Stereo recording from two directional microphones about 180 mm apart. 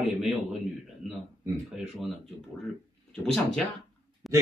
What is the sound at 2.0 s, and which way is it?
Speech, centre (ahead or behind).